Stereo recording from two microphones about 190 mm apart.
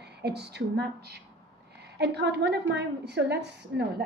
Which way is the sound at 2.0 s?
60° right (ahead or behind).